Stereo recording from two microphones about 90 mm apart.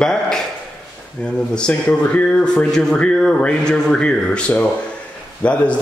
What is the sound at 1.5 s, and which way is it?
Speech, 10° left (ahead or behind).